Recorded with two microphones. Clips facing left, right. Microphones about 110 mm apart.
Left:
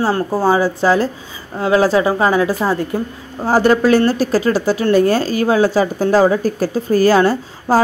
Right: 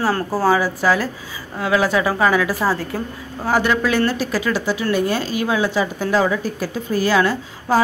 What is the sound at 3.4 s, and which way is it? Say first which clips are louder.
Speech: left 6 dB; 35° left (ahead or behind).